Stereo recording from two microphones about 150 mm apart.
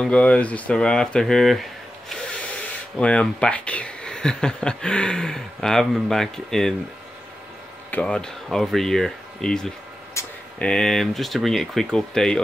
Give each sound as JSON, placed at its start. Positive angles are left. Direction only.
{"t": 0.0, "sound": "speech", "side_deg": 5}
{"t": 7.9, "sound": "speech", "side_deg": 5}
{"t": 10.2, "sound": "a sound", "side_deg": 20}
{"t": 10.6, "sound": "speech", "side_deg": 5}